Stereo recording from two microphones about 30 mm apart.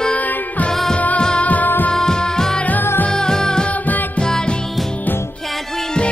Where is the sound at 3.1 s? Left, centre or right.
Left.